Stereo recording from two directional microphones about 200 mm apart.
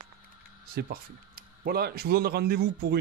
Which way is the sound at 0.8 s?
55° right (ahead or behind).